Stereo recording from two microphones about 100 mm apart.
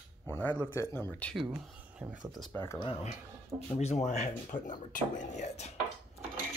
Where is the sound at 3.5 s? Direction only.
20° right (ahead or behind).